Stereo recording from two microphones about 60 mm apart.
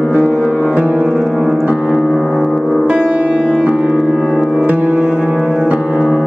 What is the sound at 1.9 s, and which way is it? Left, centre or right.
Music, centre.